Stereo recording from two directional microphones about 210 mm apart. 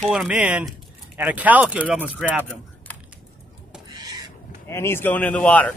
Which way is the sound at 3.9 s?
15° right (ahead or behind).